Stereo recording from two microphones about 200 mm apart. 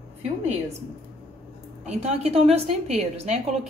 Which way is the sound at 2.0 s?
30° right (ahead or behind).